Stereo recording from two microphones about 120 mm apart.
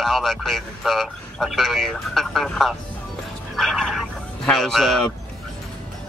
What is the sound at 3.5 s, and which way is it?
Music, centre (ahead or behind).